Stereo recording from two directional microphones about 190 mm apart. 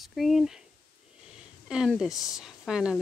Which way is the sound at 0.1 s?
Centre (ahead or behind).